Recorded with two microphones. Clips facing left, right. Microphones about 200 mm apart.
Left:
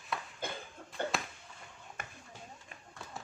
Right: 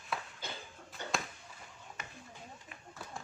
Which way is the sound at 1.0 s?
55° left (ahead or behind).